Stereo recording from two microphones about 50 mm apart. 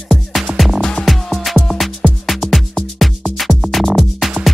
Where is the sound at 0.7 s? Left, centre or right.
Centre.